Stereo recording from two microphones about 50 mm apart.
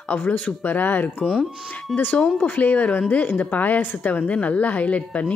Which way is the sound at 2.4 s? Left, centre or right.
Left.